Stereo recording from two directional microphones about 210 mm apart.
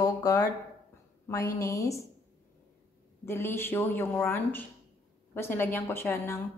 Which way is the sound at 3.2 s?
10° left (ahead or behind).